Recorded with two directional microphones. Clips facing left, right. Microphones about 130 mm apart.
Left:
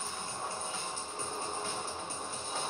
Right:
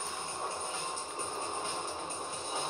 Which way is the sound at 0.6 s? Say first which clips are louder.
Right 1 dB; 15° right (ahead or behind).